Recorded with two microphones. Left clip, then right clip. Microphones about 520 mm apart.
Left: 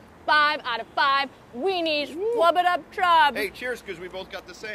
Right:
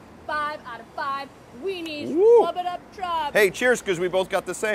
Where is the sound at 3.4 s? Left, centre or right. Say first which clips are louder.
Right 10 dB; right.